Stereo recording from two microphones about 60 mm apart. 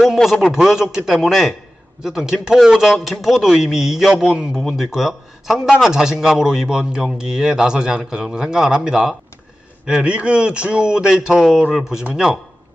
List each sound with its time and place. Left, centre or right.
0.0 s a man's voice: centre